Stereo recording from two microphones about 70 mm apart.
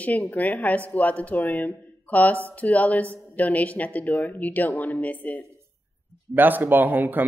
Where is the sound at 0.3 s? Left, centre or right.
Left.